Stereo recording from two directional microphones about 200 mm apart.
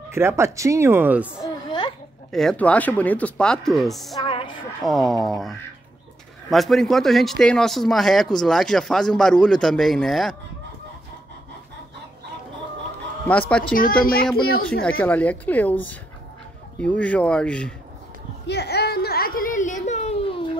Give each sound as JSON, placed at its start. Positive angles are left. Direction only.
{"t": 0.1, "sound": "speech", "side_deg": -10}
{"t": 1.3, "sound": "a sound", "side_deg": 20}
{"t": 2.3, "sound": "speech", "side_deg": 5}
{"t": 4.2, "sound": "music", "side_deg": 25}
{"t": 4.8, "sound": "speech", "side_deg": 0}
{"t": 13.3, "sound": "a woman's voice", "side_deg": 5}
{"t": 13.7, "sound": "a woman's voice", "side_deg": 45}
{"t": 14.9, "sound": "a woman's voice", "side_deg": 10}
{"t": 18.5, "sound": "a sound", "side_deg": 55}